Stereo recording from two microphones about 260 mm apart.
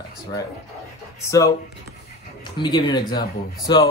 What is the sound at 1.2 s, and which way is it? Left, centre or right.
Speech, centre.